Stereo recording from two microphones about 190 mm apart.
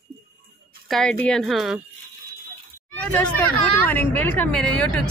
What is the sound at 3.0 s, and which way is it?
Speech, 5° left (ahead or behind).